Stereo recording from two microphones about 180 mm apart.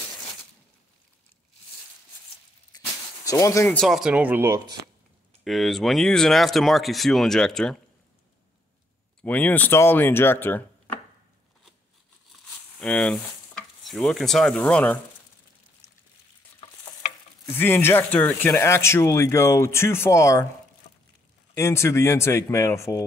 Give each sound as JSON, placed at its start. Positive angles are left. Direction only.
{"t": 2.7, "sound": "a sound", "side_deg": 20}
{"t": 3.3, "sound": "speech", "side_deg": 15}
{"t": 3.7, "sound": "speech", "side_deg": 0}
{"t": 5.4, "sound": "speech", "side_deg": 0}
{"t": 9.2, "sound": "speech", "side_deg": 10}
{"t": 12.7, "sound": "stir", "side_deg": 5}
{"t": 17.5, "sound": "speech", "side_deg": 10}
{"t": 21.5, "sound": "speech", "side_deg": 15}